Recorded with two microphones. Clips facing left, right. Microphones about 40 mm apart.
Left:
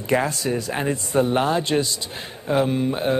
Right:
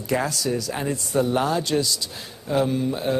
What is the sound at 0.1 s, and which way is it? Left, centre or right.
Speech, left.